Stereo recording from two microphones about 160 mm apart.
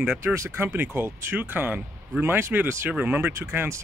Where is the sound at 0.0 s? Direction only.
15° right (ahead or behind).